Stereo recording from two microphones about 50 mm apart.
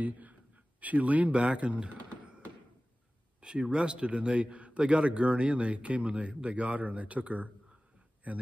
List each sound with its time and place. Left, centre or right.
0.0 s a man's voice: right
3.3 s a man's voice: centre